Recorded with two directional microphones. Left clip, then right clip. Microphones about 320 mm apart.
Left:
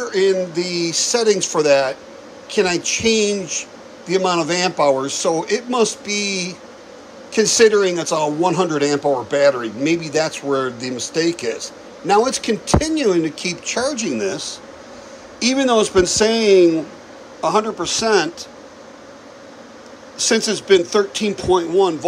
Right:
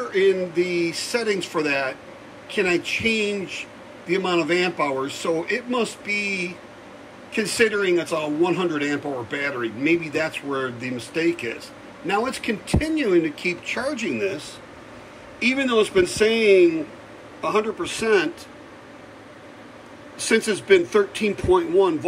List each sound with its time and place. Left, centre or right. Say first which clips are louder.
0.3 s a man's voice: left 2 dB; centre
14.3 s speech: left 6 dB; left
15.3 s a sound: left 3 dB; centre
15.7 s a man's voice: left 5 dB; centre
16.3 s speech: left 2 dB; left
17.4 s a man's voice: left 5 dB; centre
20.2 s a man's voice: left 3 dB; centre